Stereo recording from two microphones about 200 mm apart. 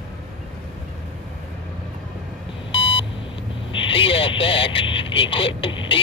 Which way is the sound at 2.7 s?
25° left (ahead or behind).